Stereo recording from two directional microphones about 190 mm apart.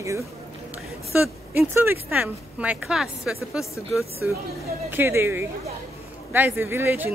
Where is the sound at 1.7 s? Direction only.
10° right (ahead or behind).